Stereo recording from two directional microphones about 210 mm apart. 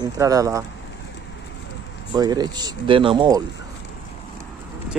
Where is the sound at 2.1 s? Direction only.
20° right (ahead or behind).